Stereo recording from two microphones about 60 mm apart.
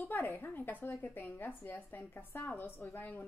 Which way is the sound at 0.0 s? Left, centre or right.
Left.